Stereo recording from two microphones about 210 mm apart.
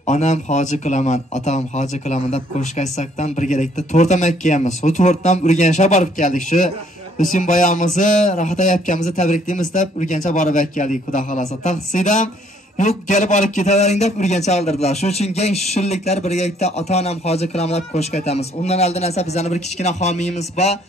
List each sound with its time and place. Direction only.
0.0 s a man's voice: 35° left (ahead or behind)